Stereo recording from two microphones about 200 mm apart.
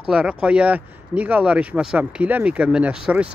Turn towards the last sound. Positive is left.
turn(degrees=-5)  # may be behind; listen again after turning